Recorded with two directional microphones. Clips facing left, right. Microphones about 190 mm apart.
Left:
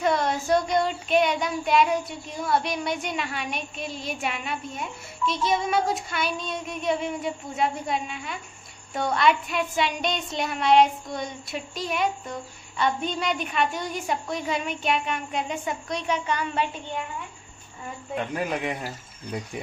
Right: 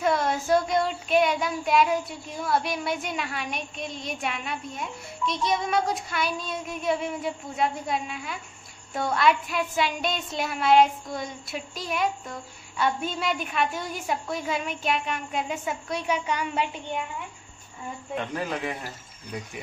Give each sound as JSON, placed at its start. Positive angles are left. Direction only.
{"t": 0.0, "sound": "child singing", "side_deg": 0}
{"t": 18.1, "sound": "a man's voice", "side_deg": 10}